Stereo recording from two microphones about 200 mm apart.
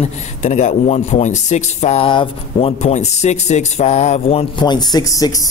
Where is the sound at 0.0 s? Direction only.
35° left (ahead or behind).